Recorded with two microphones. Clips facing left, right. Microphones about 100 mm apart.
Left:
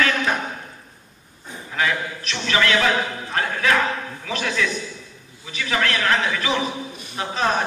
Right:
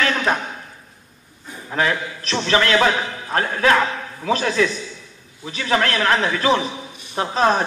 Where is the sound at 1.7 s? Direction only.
40° right (ahead or behind).